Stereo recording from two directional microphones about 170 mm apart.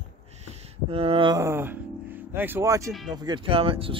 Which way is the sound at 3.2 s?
30° right (ahead or behind).